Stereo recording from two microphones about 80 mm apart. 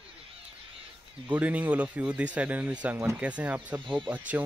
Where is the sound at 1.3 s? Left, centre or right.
Centre.